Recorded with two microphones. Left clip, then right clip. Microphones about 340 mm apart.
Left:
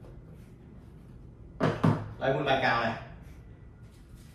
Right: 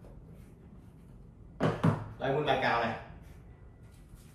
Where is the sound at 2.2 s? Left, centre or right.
Centre.